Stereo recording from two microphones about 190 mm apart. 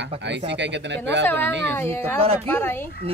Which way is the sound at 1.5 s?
65° right (ahead or behind).